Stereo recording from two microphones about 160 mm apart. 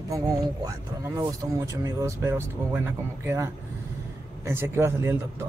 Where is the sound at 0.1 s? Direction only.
20° right (ahead or behind).